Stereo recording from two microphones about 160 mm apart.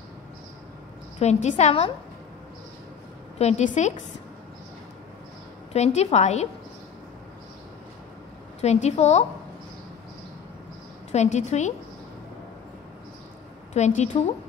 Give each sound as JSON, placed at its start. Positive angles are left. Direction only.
{"t": 1.2, "sound": "a woman's voice", "side_deg": 45}
{"t": 3.3, "sound": "a woman's voice", "side_deg": 45}
{"t": 5.7, "sound": "a woman's voice", "side_deg": 45}
{"t": 8.5, "sound": "a woman's voice", "side_deg": 45}
{"t": 11.1, "sound": "a woman's voice", "side_deg": 45}
{"t": 13.7, "sound": "a woman's voice", "side_deg": 45}